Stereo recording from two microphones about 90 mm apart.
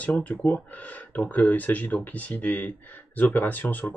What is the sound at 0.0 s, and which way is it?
Speech, 15° left (ahead or behind).